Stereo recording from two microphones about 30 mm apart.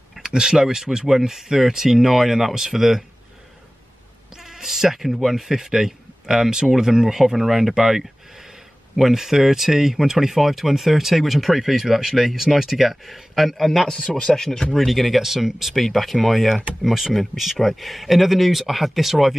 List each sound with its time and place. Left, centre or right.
0.2 s speech: right
4.6 s speech: centre
13.7 s a man's voice: centre
14.7 s speech: centre
15.7 s speech: centre